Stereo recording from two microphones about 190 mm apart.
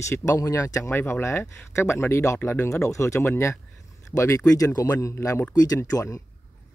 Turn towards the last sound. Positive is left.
turn(degrees=15)  # may be behind; listen again after turning